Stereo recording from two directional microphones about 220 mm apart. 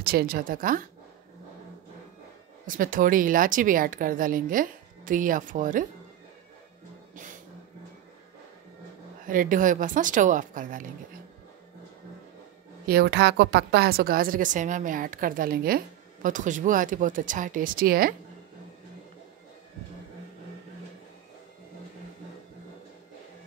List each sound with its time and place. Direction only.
0.0 s a woman's voice: 40° right (ahead or behind)
2.6 s a woman's voice: 40° right (ahead or behind)
9.2 s a woman's voice: 40° right (ahead or behind)
12.8 s a woman's voice: 45° right (ahead or behind)